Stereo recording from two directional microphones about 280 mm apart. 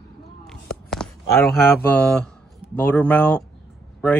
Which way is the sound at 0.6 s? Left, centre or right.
Centre.